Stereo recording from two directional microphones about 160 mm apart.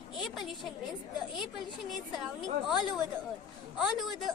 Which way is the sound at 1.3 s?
Centre (ahead or behind).